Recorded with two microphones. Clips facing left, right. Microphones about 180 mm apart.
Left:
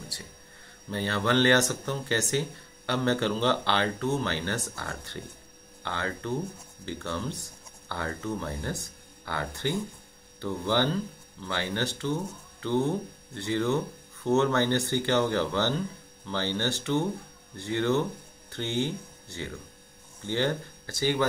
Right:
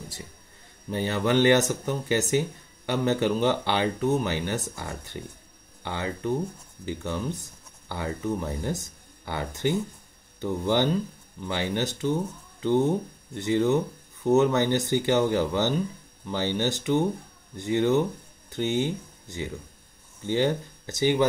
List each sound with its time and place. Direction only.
0.8 s speech: 15° right (ahead or behind)